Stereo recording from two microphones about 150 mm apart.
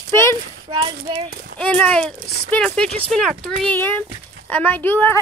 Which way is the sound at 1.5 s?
10° left (ahead or behind).